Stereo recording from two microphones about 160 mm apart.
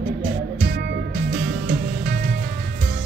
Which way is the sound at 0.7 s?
90° right.